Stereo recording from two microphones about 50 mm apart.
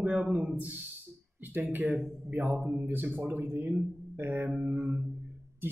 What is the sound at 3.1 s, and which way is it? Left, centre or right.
Speech, right.